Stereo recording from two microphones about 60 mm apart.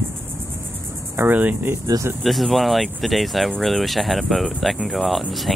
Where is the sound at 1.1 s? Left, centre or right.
Right.